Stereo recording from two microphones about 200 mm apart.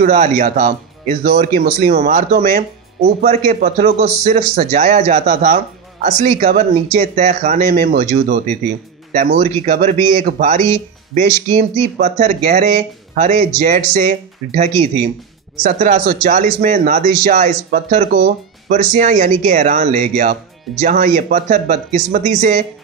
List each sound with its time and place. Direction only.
0.0 s speech: 40° right (ahead or behind)